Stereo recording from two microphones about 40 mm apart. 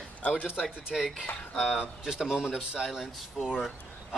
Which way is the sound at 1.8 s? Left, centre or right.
Centre.